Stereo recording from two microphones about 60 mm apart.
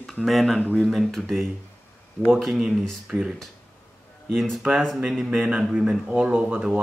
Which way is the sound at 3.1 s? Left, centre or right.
Centre.